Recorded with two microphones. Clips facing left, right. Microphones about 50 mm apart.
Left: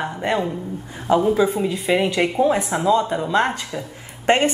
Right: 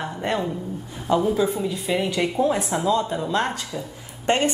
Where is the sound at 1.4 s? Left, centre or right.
Left.